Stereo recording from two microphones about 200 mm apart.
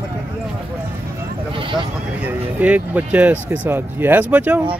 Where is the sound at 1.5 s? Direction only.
25° right (ahead or behind).